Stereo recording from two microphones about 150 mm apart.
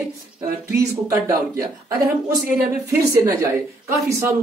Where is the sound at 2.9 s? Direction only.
20° right (ahead or behind).